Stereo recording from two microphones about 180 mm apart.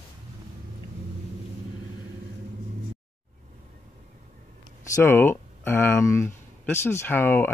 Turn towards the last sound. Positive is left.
turn(degrees=10)  # may be behind; listen again after turning